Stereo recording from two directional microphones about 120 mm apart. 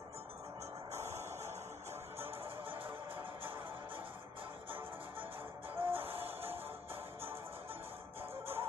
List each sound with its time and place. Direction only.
0.9 s music: 20° right (ahead or behind)
5.8 s music: 50° right (ahead or behind)
6.2 s music: 20° right (ahead or behind)
8.2 s music: 20° right (ahead or behind)